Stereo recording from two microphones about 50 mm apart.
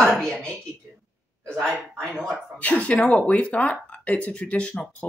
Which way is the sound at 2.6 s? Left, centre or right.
Left.